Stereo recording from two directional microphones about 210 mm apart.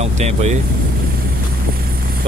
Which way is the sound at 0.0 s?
30° right (ahead or behind).